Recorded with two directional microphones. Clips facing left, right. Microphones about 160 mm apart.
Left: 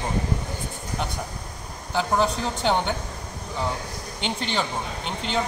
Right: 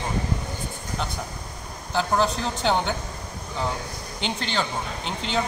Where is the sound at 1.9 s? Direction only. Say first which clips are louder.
Even; 5° left (ahead or behind).